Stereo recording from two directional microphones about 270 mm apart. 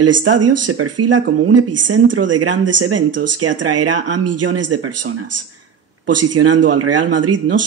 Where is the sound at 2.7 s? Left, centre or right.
Right.